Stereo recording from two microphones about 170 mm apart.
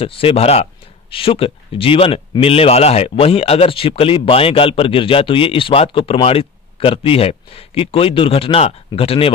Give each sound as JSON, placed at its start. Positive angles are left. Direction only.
{"t": 0.0, "sound": "a man's voice", "side_deg": 35}